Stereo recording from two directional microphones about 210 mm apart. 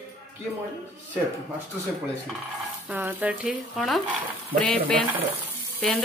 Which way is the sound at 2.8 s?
5° right (ahead or behind).